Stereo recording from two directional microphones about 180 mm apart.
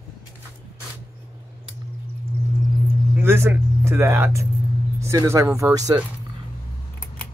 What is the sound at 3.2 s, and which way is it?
Speech, 15° right (ahead or behind).